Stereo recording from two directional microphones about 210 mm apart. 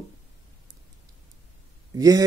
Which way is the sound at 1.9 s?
15° right (ahead or behind).